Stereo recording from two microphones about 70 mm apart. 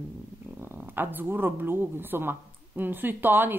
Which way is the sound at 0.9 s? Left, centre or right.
Right.